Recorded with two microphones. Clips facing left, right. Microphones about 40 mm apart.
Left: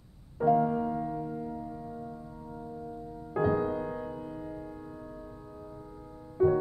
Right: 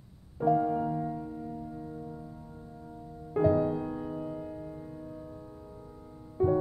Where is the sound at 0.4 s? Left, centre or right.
Centre.